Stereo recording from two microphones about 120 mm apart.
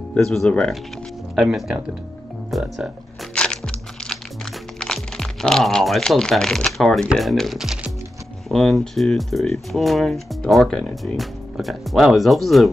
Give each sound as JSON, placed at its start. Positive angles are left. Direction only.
{"t": 0.1, "sound": "speech", "side_deg": 0}
{"t": 3.3, "sound": "crunch", "side_deg": 5}
{"t": 4.7, "sound": "speech", "side_deg": 5}